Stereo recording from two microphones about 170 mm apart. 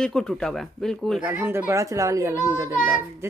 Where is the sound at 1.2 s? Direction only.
15° right (ahead or behind).